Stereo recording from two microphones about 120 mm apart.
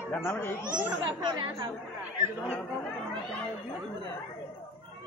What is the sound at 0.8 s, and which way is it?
Speech, 30° right (ahead or behind).